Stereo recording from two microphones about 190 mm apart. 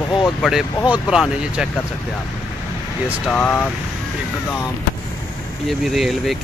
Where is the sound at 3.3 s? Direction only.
5° left (ahead or behind).